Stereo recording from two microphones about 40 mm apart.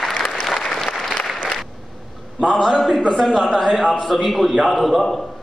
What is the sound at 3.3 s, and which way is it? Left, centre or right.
A man's voice, centre.